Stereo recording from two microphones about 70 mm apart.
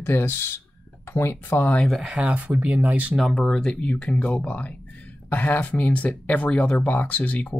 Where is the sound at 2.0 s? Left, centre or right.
Centre.